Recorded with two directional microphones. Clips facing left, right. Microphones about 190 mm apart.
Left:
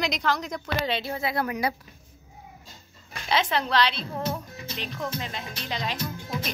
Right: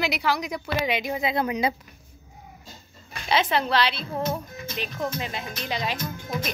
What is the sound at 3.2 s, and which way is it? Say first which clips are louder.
A woman's voice: right 2 dB; 5° right (ahead or behind).